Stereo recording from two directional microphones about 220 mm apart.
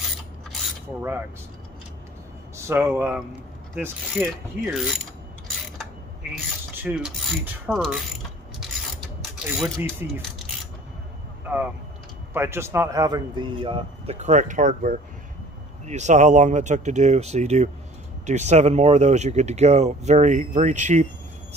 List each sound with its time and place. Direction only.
0.5 s mechanisms: centre (ahead or behind)
2.5 s speech: 10° right (ahead or behind)
3.8 s mechanisms: 5° right (ahead or behind)
6.8 s mechanisms: 5° right (ahead or behind)
9.8 s speech: 10° right (ahead or behind)
12.4 s a man's voice: 10° right (ahead or behind); by 21.1 s 35° right (ahead or behind)